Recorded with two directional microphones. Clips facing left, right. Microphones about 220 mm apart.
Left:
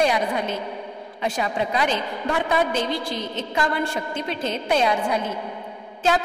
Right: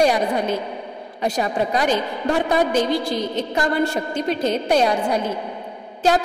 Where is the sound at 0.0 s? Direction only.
40° right (ahead or behind).